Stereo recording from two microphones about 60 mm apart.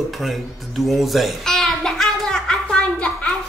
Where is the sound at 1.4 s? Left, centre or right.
Centre.